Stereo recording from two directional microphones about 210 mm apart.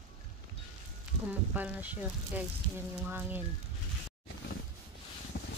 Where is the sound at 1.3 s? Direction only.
5° right (ahead or behind).